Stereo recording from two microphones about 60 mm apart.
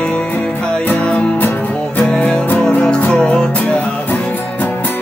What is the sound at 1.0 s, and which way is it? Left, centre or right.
Music, left.